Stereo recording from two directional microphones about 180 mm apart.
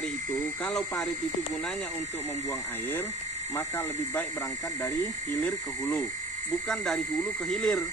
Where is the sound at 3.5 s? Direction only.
10° left (ahead or behind).